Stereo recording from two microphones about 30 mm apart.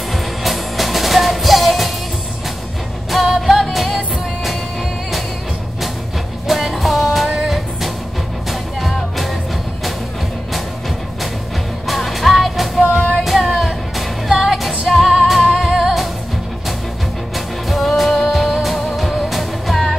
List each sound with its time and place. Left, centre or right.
0.1 s music: centre
3.1 s music: centre
6.4 s music: centre
11.8 s music: centre
13.1 s child singing: centre
13.6 s music: centre
15.4 s music: centre
17.6 s music: centre